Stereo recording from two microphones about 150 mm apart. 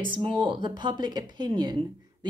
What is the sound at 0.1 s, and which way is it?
Speech, 35° right (ahead or behind).